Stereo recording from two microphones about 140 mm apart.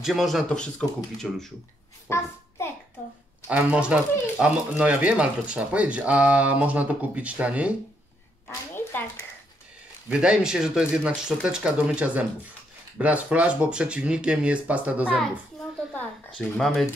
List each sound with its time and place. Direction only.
0.0 s speech: centre (ahead or behind)
2.0 s hands: 20° left (ahead or behind)
3.4 s speech: 10° right (ahead or behind)
8.5 s a sound: 15° left (ahead or behind)
10.0 s speech: 5° right (ahead or behind)
16.3 s speech: centre (ahead or behind)